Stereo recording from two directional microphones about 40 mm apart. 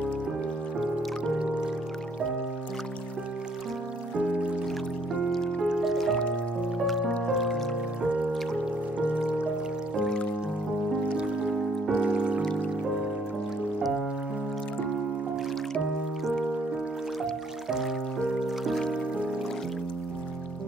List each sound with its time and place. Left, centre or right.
5.3 s music: centre
8.9 s music: right
9.9 s music: left
11.9 s music: right
17.6 s music: centre